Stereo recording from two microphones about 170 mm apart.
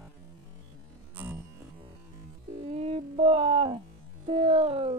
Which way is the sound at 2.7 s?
35° right (ahead or behind).